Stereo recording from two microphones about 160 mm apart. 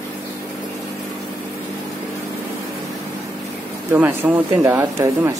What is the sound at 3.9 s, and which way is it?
Speech, 10° right (ahead or behind).